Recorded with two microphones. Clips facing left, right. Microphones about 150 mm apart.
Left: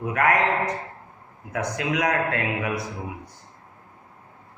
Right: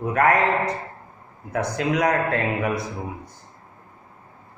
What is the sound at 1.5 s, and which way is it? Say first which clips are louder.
A man's voice: right 3 dB; 45° right (ahead or behind).